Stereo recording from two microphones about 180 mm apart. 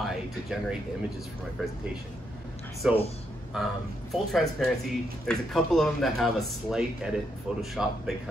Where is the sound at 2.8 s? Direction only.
5° right (ahead or behind).